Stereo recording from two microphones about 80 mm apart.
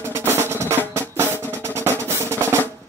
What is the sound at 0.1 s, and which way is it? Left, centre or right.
Drum, right.